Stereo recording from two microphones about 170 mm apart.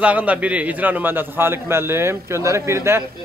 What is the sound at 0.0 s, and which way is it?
A man's voice, 10° right (ahead or behind).